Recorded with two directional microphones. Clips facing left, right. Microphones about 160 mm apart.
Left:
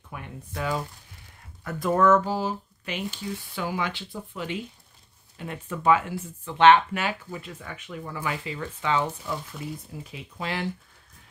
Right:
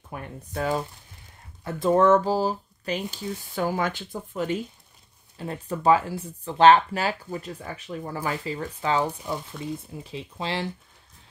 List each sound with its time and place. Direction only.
0.1 s speech: 40° right (ahead or behind)
1.6 s speech: 25° right (ahead or behind)
9.6 s speech: 25° right (ahead or behind)